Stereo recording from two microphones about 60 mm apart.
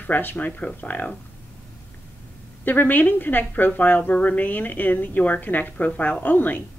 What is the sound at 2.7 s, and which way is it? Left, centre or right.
A woman's voice, left.